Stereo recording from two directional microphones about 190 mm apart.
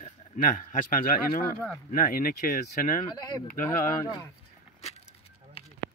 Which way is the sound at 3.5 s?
45° left (ahead or behind).